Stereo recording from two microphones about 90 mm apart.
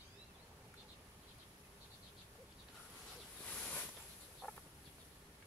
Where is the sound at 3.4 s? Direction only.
10° left (ahead or behind).